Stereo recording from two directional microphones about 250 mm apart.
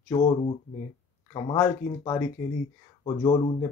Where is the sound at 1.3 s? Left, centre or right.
Centre.